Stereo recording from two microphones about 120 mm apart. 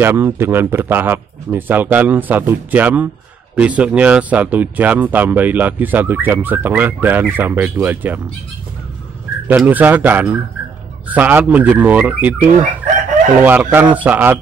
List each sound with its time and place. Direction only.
0.0 s speech: 20° right (ahead or behind)
9.7 s speech: 15° right (ahead or behind)